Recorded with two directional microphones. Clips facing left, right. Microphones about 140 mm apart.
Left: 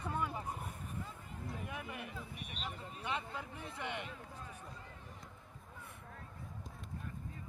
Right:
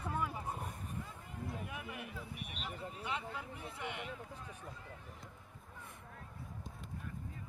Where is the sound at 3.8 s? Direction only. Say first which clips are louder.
Left 2 dB; 10° right (ahead or behind).